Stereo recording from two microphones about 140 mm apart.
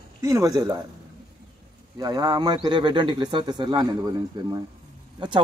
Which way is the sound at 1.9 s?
25° right (ahead or behind).